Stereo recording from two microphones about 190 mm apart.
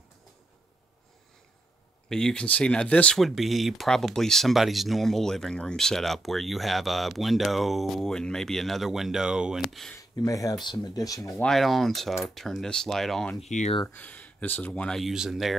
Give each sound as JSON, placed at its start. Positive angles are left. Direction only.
{"t": 2.0, "sound": "speech", "side_deg": 5}
{"t": 9.9, "sound": "speech", "side_deg": 15}
{"t": 11.4, "sound": "speech", "side_deg": 0}
{"t": 13.4, "sound": "speech", "side_deg": 35}
{"t": 13.9, "sound": "speech", "side_deg": 10}